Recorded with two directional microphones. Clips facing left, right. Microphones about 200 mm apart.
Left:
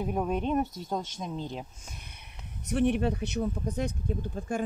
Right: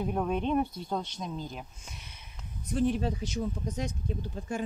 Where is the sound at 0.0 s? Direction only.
5° left (ahead or behind).